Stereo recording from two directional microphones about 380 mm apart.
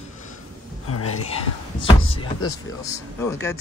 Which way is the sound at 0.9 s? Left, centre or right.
Left.